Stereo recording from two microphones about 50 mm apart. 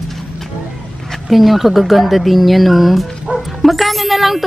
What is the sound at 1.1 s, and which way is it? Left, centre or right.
Speech, centre.